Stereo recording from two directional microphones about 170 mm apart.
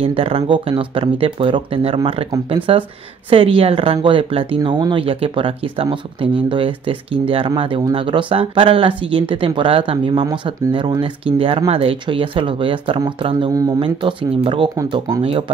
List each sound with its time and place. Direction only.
0.0 s speech: 35° right (ahead or behind)
14.8 s speech: 20° right (ahead or behind)
15.2 s speech: 30° right (ahead or behind)